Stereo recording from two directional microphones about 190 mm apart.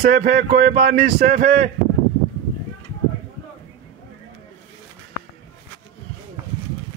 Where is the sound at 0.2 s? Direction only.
35° right (ahead or behind).